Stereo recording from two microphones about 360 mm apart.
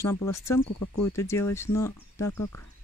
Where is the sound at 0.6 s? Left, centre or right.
Left.